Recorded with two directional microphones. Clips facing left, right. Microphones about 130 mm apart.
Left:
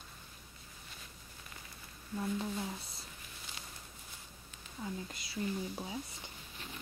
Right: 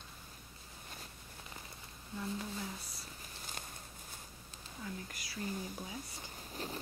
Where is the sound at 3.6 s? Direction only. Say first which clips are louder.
Right 4 dB; 50° right (ahead or behind).